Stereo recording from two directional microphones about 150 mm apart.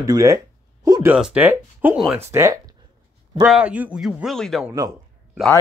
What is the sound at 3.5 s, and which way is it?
Speech, 10° right (ahead or behind).